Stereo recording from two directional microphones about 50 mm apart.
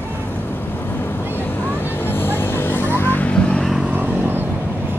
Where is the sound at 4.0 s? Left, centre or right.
Right.